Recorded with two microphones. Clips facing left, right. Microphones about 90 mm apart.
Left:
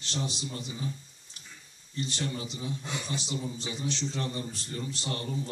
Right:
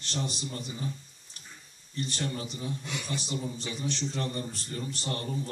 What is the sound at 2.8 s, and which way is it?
Speech, 30° left (ahead or behind).